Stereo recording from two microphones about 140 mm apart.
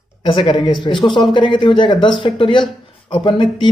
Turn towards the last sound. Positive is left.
turn(degrees=35)  # may be behind; listen again after turning